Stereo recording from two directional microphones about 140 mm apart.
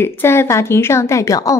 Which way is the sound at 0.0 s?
15° left (ahead or behind).